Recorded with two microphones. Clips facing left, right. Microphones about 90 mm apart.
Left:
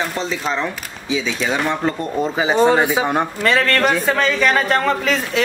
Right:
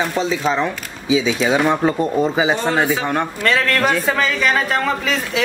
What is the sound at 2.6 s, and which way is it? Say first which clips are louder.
A man's voice: left 3 dB; 15° left (ahead or behind).